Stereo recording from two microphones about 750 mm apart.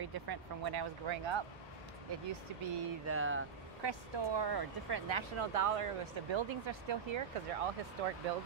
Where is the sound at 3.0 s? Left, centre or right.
Centre.